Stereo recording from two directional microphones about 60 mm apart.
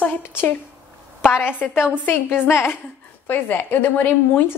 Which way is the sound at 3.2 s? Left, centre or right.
Left.